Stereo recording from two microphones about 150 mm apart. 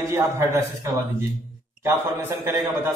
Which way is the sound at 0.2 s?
20° right (ahead or behind).